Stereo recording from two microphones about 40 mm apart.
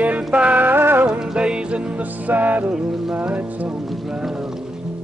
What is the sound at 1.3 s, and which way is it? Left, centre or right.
Music, right.